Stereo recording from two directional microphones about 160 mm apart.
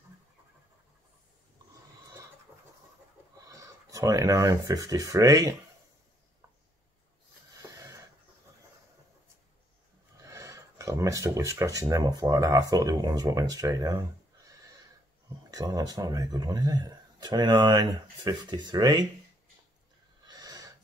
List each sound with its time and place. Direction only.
3.4 s speech: 20° right (ahead or behind)
7.5 s a sound: 20° right (ahead or behind)
10.2 s speech: 20° right (ahead or behind)
20.2 s gasp: 25° right (ahead or behind)